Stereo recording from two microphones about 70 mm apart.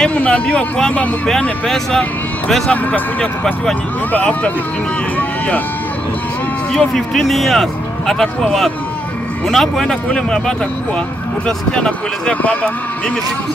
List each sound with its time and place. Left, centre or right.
0.1 s speech: centre
2.7 s speech: centre
6.7 s speech: centre; by 12.7 s left